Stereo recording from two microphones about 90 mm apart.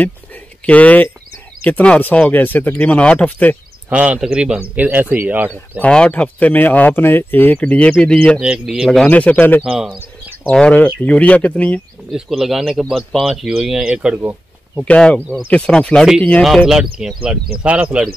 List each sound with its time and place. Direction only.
0.7 s speech: 15° left (ahead or behind)
3.9 s speech: 15° right (ahead or behind)
5.8 s speech: 15° left (ahead or behind)
8.4 s speech: 10° right (ahead or behind)
9.0 s speech: 15° left (ahead or behind)
12.1 s speech: centre (ahead or behind)
14.9 s speech: 10° left (ahead or behind)
16.6 s speech: 5° right (ahead or behind)